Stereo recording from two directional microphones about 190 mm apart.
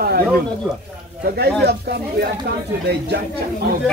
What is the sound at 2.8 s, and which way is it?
Speech, 60° right (ahead or behind).